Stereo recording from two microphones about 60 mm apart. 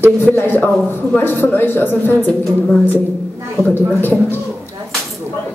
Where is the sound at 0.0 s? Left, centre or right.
Left.